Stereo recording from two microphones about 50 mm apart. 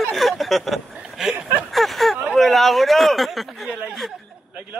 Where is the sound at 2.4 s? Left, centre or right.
Centre.